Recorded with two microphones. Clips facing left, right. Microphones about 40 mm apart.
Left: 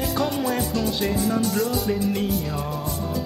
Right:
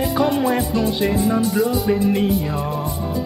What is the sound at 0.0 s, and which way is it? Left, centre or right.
Music, centre.